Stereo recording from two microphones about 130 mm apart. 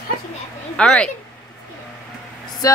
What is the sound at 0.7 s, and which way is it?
Speech, 5° left (ahead or behind).